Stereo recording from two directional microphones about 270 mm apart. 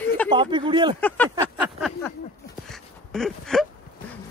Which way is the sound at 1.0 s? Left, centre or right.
Centre.